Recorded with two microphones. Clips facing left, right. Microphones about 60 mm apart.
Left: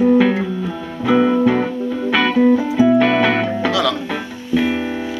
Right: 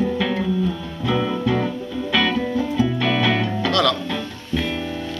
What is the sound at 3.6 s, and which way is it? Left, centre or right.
Music, centre.